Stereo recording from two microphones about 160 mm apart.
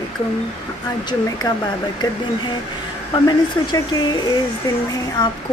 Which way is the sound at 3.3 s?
25° left (ahead or behind).